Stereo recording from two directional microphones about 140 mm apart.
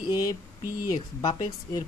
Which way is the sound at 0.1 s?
25° left (ahead or behind).